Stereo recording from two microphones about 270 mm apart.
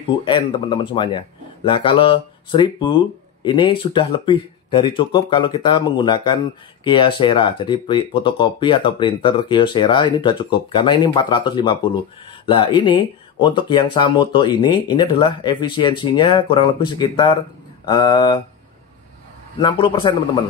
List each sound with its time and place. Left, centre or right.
0.2 s speech: centre
19.6 s speech: centre